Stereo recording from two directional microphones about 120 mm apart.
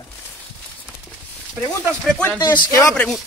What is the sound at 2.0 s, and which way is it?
Speech, 5° left (ahead or behind).